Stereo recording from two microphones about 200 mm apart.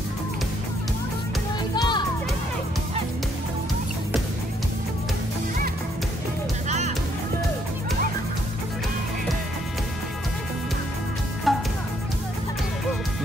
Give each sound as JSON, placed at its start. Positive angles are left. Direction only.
{"t": 1.8, "sound": "music", "side_deg": 20}
{"t": 11.5, "sound": "music", "side_deg": 0}